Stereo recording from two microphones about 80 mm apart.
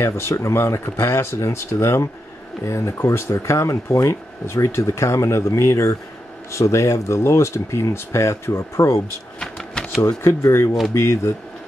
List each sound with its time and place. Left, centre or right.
0.0 s speech: left
9.4 s sewing machine: centre
10.0 s speech: left